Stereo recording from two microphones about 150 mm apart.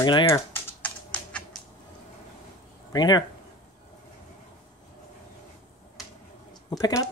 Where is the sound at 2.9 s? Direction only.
30° left (ahead or behind).